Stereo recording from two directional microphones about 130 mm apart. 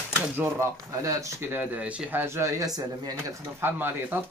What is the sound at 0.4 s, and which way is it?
Speech, 20° right (ahead or behind).